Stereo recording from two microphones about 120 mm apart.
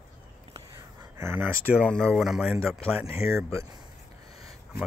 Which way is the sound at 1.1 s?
20° right (ahead or behind).